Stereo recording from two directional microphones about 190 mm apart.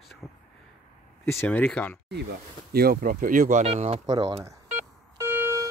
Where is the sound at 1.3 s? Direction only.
10° left (ahead or behind).